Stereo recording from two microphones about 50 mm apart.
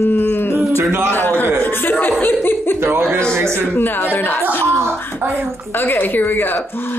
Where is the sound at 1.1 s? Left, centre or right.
Left.